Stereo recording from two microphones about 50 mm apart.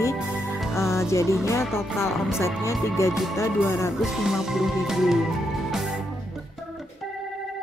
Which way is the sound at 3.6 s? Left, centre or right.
Left.